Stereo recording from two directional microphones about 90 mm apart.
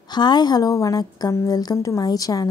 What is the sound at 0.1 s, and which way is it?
Speech, 55° left (ahead or behind).